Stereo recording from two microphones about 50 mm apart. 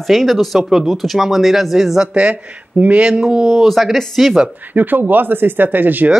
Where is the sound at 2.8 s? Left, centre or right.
Right.